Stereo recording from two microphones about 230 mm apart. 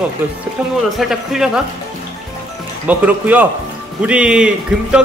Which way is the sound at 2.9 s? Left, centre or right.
Centre.